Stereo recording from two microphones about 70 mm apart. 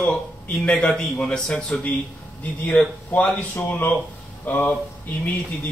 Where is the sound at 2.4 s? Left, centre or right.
Left.